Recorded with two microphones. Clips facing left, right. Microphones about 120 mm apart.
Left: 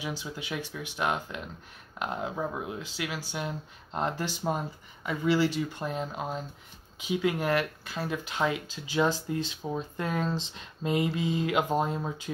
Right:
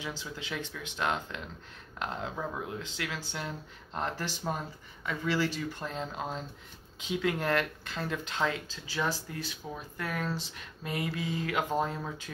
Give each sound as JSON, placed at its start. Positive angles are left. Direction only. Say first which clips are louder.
{"t": 0.0, "sound": "speech", "louder": "left 3 dB", "side_deg": 15}